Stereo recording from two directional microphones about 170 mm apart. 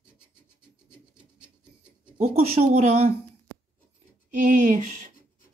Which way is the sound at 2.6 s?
45° right (ahead or behind).